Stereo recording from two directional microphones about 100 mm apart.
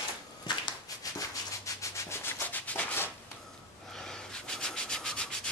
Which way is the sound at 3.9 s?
5° left (ahead or behind).